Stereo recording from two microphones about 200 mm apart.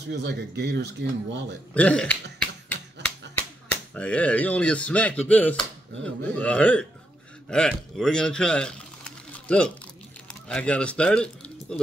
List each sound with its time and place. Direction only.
0.0 s speech: 55° right (ahead or behind)
1.7 s speech: 5° left (ahead or behind)
3.9 s speech: 5° left (ahead or behind)